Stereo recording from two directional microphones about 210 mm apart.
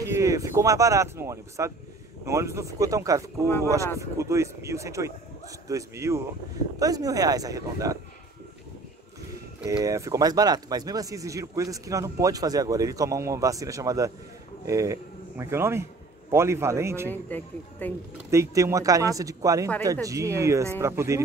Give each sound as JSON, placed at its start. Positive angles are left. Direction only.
{"t": 0.0, "sound": "speech", "side_deg": -15}
{"t": 9.7, "sound": "a man's voice", "side_deg": -15}
{"t": 17.1, "sound": "speech", "side_deg": 10}
{"t": 18.3, "sound": "speech", "side_deg": -15}